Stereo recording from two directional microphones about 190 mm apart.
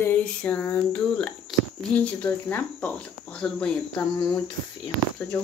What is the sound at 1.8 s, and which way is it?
Speech, 5° left (ahead or behind).